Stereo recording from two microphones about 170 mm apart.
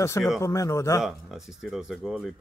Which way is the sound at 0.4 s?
15° left (ahead or behind).